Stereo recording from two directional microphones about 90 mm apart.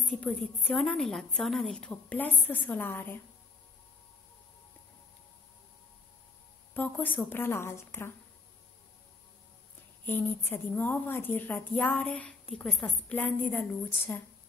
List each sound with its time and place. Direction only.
0.0 s a woman's voice: 10° left (ahead or behind)
6.7 s a woman's voice: 20° left (ahead or behind)
10.0 s a woman's voice: 25° left (ahead or behind)
12.4 s a woman's voice: centre (ahead or behind)
13.1 s a woman's voice: 20° left (ahead or behind)